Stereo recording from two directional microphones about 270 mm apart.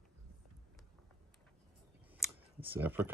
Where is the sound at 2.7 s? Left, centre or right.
Centre.